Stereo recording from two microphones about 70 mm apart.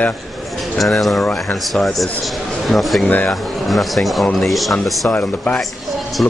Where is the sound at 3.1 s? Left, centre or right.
Left.